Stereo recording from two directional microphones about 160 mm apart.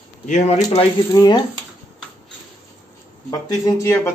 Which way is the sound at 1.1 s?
25° left (ahead or behind).